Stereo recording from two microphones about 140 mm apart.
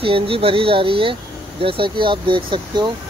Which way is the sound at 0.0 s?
40° right (ahead or behind).